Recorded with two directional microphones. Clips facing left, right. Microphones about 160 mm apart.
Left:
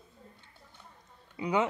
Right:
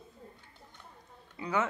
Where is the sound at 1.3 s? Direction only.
15° left (ahead or behind).